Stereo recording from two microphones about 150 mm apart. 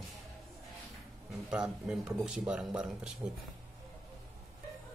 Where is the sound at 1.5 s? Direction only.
5° right (ahead or behind).